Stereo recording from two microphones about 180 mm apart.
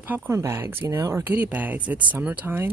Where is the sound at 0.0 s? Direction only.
10° right (ahead or behind).